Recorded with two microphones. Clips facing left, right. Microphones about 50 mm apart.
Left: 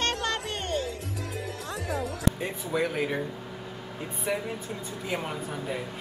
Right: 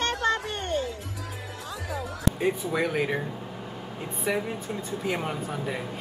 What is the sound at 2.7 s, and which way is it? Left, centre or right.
Speech, centre.